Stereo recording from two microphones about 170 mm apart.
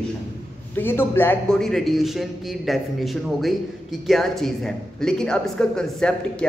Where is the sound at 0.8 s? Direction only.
15° left (ahead or behind).